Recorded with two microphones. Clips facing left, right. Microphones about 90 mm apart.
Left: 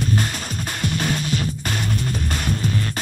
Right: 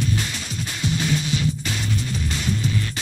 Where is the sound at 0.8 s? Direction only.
50° left (ahead or behind).